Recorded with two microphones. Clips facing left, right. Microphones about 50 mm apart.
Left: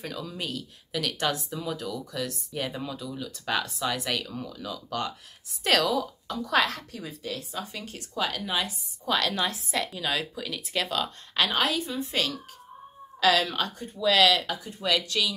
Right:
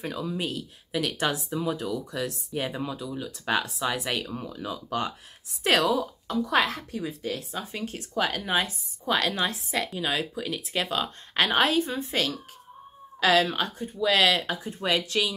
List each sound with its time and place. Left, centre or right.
0.0 s speech: centre
7.2 s speech: right
9.0 s speech: centre
11.4 s speech: right
13.2 s speech: right